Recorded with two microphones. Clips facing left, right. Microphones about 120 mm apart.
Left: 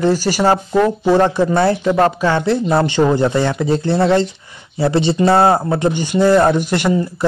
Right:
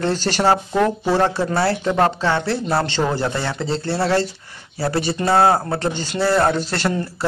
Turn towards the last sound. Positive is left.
turn(degrees=15)  # may be behind; listen again after turning